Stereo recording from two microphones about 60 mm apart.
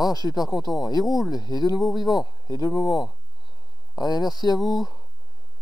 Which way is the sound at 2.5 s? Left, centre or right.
Left.